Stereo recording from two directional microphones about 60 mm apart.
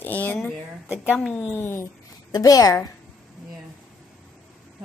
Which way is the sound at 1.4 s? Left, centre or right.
Left.